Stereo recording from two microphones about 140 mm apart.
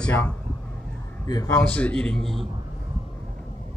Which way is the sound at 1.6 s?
10° left (ahead or behind).